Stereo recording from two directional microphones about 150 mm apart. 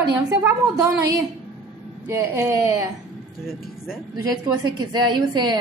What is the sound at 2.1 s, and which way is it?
Speech, 20° right (ahead or behind).